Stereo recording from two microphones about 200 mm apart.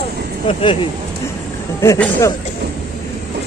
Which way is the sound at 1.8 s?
15° left (ahead or behind).